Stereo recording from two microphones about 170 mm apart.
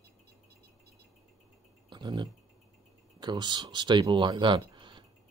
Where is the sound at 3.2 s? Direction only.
25° right (ahead or behind).